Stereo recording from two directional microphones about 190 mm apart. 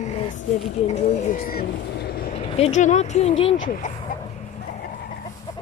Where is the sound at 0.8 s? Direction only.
35° left (ahead or behind); by 2.3 s 55° left (ahead or behind).